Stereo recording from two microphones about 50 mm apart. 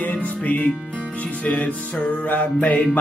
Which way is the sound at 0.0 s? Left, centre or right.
Left.